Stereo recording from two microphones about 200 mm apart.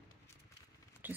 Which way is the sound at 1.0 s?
10° right (ahead or behind).